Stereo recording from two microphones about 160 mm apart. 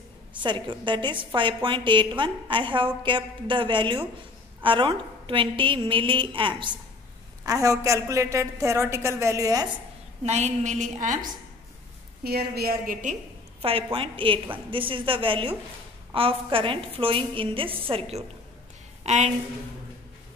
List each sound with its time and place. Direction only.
0.4 s a woman's voice: 30° right (ahead or behind)
10.2 s a woman's voice: 45° right (ahead or behind)
12.2 s a woman's voice: 75° right (ahead or behind); by 13.1 s 55° right (ahead or behind)
13.6 s a woman's voice: 35° right (ahead or behind)